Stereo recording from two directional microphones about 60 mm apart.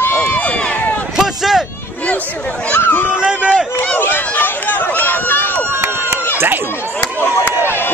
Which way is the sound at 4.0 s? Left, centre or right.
Left.